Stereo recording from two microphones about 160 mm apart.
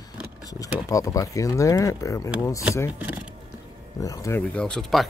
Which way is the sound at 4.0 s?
20° left (ahead or behind).